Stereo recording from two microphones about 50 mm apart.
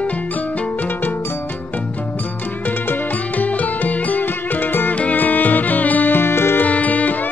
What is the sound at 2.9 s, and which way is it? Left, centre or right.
Music, left.